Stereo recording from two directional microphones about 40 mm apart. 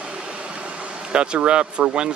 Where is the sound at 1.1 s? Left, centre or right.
Right.